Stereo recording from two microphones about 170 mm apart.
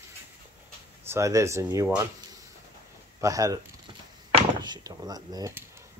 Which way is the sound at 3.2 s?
20° right (ahead or behind).